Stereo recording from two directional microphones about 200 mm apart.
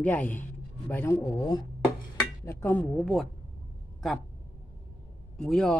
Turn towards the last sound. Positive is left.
turn(degrees=5)  # may be behind; listen again after turning